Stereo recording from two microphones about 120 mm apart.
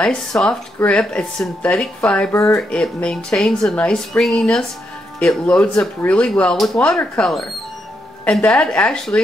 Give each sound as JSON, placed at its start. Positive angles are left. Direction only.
{"t": 0.0, "sound": "speech", "side_deg": 5}
{"t": 2.3, "sound": "speech", "side_deg": 25}
{"t": 2.7, "sound": "speech", "side_deg": 5}